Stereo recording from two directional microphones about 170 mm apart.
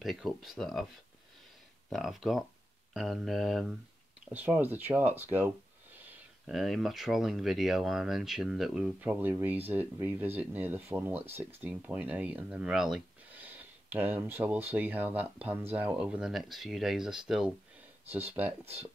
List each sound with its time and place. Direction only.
0.0 s speech: centre (ahead or behind)
1.9 s speech: centre (ahead or behind)
4.3 s speech: 10° right (ahead or behind)
6.4 s speech: centre (ahead or behind)